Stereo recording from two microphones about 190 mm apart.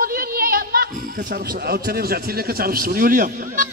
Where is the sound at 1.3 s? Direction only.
55° right (ahead or behind).